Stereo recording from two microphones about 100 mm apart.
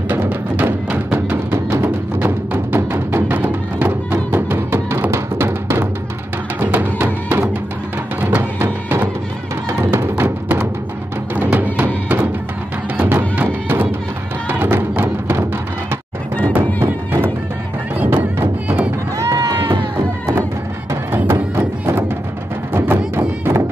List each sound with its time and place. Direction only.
0.1 s music: 20° right (ahead or behind)
8.2 s music: 20° right (ahead or behind)
16.8 s music: 20° right (ahead or behind)
19.1 s run: 35° right (ahead or behind)
19.6 s a sound: 55° right (ahead or behind)
20.9 s music: 25° right (ahead or behind)